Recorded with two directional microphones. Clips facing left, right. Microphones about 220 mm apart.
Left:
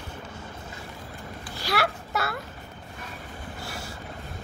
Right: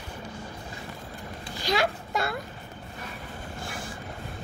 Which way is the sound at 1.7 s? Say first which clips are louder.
Right 1 dB; 15° right (ahead or behind).